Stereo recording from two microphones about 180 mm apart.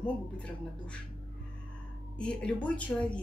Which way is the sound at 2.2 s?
5° left (ahead or behind).